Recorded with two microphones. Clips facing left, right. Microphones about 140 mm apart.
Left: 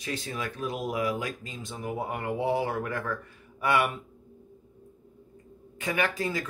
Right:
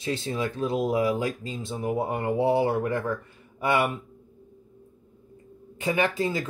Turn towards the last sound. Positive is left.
turn(degrees=-25)  # may be behind; listen again after turning